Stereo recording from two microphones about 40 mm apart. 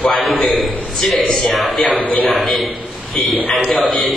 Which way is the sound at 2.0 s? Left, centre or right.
Left.